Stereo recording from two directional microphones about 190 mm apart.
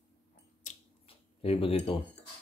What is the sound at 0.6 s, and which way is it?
Finger snapping, 30° left (ahead or behind).